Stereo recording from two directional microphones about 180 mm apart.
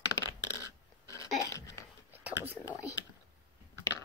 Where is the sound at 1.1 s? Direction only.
20° left (ahead or behind).